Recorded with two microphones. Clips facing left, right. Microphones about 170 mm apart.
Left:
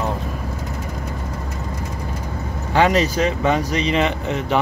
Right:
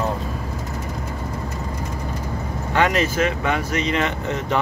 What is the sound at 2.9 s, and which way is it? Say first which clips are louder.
Speech: left 2 dB; 20° left (ahead or behind).